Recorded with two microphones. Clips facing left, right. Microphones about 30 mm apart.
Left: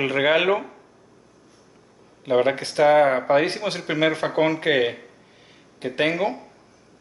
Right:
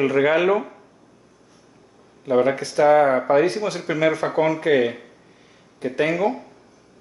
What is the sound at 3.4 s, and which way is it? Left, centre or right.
Speech, left.